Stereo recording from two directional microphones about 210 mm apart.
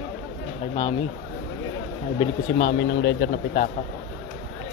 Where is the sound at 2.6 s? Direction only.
50° left (ahead or behind).